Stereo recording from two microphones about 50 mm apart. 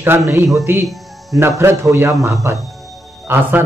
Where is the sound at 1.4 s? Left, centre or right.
Right.